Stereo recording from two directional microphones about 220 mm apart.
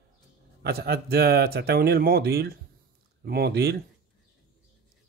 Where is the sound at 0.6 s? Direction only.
45° right (ahead or behind).